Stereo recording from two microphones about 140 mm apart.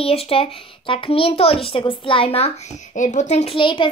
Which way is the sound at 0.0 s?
45° left (ahead or behind).